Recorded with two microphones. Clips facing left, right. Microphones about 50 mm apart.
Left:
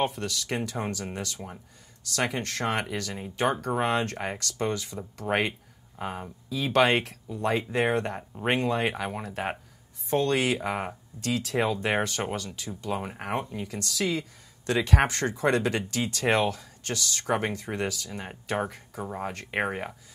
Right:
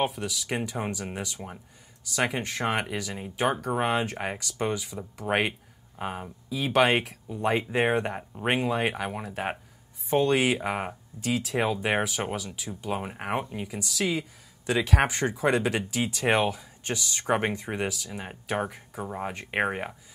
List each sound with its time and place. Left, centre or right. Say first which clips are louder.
0.0 s speech: even; centre
7.2 s speech: right 2 dB; centre
10.0 s speech: right 2 dB; centre
17.8 s speech: even; centre